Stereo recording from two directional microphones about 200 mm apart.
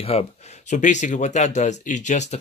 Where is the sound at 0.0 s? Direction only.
30° left (ahead or behind).